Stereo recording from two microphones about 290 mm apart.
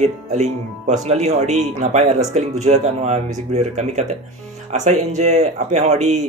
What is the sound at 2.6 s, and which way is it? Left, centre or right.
Speech, right.